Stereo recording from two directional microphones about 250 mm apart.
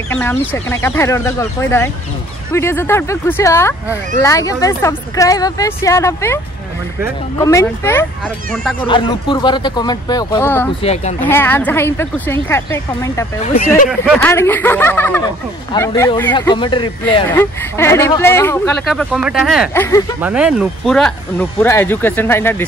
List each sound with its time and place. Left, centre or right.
0.1 s speech: centre
8.8 s speech: left
10.8 s speech: left
11.1 s speech: centre
18.9 s speech: centre
19.7 s speech: centre
20.2 s speech: centre